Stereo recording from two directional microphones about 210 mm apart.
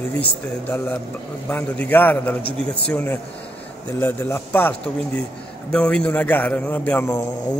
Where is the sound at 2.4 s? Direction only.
50° left (ahead or behind).